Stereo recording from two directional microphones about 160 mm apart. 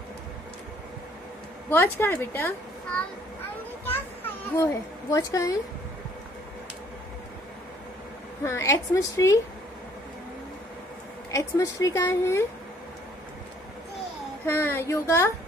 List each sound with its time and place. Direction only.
1.7 s speech: 15° left (ahead or behind)
3.8 s children playing: 10° left (ahead or behind)
5.1 s a woman's voice: 20° left (ahead or behind)
8.5 s a woman's voice: 15° left (ahead or behind)
11.3 s speech: 20° left (ahead or behind)
14.4 s speech: 15° left (ahead or behind)